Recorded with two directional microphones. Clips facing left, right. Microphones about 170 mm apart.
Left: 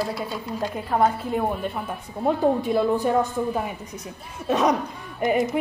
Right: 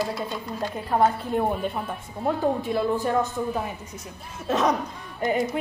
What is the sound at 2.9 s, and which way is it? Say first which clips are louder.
Speech: left 2 dB; 15° left (ahead or behind).